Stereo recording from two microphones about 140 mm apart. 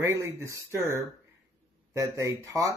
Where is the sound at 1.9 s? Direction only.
20° right (ahead or behind).